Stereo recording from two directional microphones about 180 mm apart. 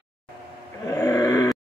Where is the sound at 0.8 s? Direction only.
20° left (ahead or behind).